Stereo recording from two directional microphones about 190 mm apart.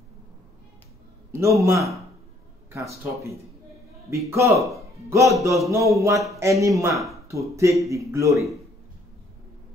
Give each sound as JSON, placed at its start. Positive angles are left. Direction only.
{"t": 1.3, "sound": "a man's voice", "side_deg": -15}